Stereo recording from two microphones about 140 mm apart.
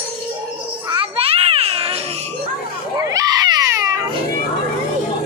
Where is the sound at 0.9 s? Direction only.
45° right (ahead or behind).